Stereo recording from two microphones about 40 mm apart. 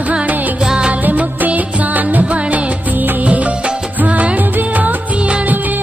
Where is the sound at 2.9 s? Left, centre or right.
Right.